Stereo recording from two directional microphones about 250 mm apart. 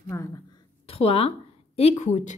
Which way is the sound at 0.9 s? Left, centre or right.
Left.